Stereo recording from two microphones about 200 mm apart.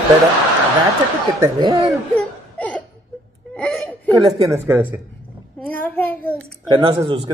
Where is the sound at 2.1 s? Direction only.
5° left (ahead or behind).